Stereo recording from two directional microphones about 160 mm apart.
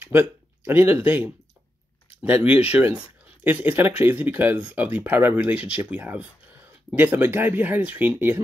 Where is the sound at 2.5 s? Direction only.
10° right (ahead or behind).